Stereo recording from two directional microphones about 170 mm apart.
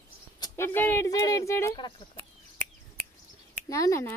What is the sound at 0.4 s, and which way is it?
A woman's voice, 15° left (ahead or behind).